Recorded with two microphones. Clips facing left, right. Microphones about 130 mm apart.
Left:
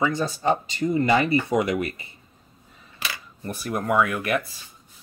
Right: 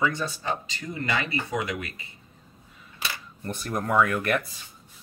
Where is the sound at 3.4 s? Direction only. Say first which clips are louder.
Left 2 dB; 5° left (ahead or behind).